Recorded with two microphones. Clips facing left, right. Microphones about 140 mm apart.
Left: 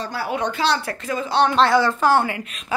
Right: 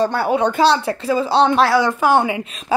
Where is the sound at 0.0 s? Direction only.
60° right (ahead or behind).